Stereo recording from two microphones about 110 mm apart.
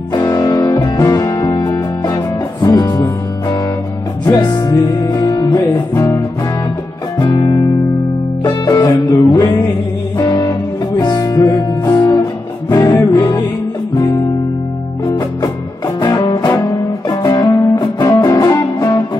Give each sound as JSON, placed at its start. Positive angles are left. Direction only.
{"t": 0.1, "sound": "music", "side_deg": 35}
{"t": 7.2, "sound": "music", "side_deg": 40}
{"t": 16.0, "sound": "music", "side_deg": 40}